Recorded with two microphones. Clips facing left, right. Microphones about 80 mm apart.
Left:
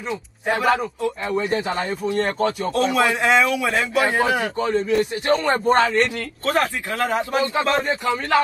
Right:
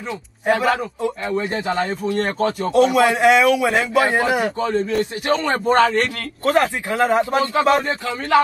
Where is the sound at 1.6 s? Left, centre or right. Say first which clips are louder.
Right 2 dB; left.